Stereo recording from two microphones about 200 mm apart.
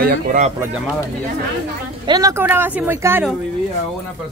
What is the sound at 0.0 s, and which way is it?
Speech, 45° right (ahead or behind).